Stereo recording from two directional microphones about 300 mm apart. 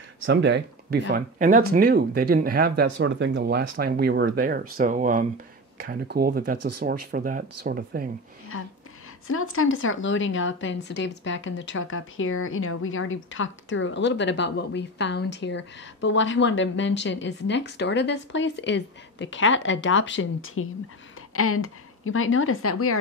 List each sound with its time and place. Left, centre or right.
0.2 s speech: right
8.5 s a woman's voice: left